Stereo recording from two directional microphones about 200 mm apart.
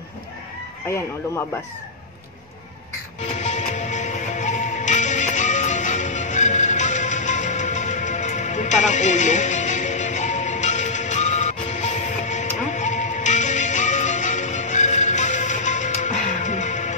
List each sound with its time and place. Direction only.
0.8 s speech: 10° left (ahead or behind)
3.2 s music: 35° left (ahead or behind)